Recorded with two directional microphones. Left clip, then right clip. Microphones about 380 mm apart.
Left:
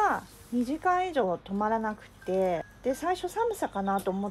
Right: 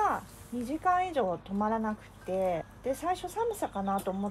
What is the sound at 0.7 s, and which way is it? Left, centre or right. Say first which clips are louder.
Speech: even; left.